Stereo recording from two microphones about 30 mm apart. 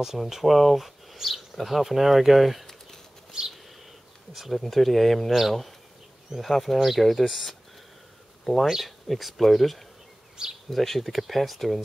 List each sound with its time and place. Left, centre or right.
0.0 s speech: centre
3.3 s a sound: right
4.3 s speech: centre
4.6 s speech: centre
8.5 s speech: centre